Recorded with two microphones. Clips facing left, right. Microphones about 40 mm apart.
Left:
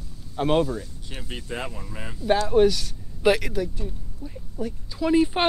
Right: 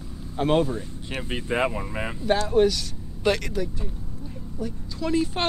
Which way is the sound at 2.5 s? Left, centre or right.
Centre.